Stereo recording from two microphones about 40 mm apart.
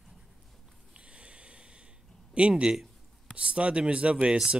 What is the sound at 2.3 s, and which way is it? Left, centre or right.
Speech, right.